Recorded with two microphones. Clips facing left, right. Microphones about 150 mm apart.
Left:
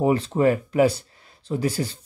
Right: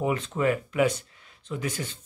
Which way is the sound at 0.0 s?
35° left (ahead or behind).